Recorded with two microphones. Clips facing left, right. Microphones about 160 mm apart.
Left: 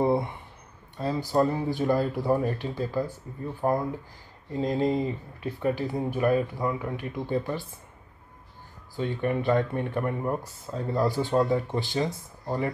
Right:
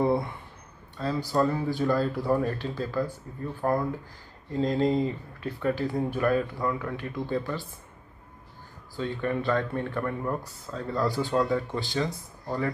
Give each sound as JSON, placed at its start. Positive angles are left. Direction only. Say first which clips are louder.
{"t": 0.0, "sound": "a sound", "louder": "left 1 dB", "side_deg": 20}
{"t": 0.9, "sound": "speech", "louder": "left 1 dB", "side_deg": 20}
{"t": 8.9, "sound": "speech", "louder": "left 2 dB", "side_deg": 15}